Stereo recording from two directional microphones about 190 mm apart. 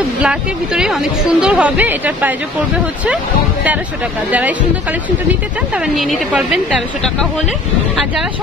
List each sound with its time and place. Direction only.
0.2 s a woman's voice: 5° right (ahead or behind)
4.3 s speech: 10° right (ahead or behind)
5.9 s a woman's voice: centre (ahead or behind)